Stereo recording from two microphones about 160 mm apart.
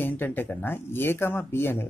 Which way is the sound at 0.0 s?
10° left (ahead or behind).